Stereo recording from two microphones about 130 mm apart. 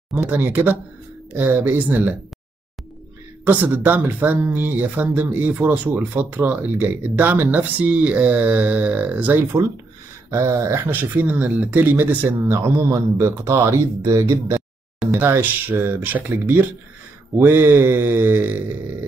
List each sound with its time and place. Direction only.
0.1 s speech: 15° right (ahead or behind)
3.4 s speech: 15° right (ahead or behind)